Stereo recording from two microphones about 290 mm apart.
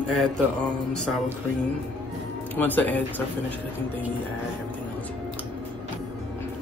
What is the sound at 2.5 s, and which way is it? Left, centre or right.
Mantra, centre.